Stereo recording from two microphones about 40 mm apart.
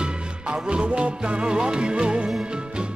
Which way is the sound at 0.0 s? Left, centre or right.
Right.